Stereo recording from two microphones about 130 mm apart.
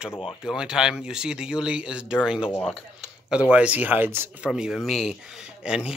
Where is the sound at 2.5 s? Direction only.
10° left (ahead or behind).